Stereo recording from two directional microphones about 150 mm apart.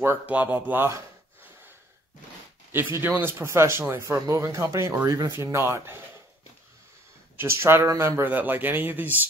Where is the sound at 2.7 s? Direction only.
15° right (ahead or behind).